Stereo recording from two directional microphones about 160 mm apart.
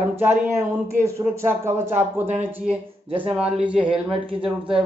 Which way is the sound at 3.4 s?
5° right (ahead or behind).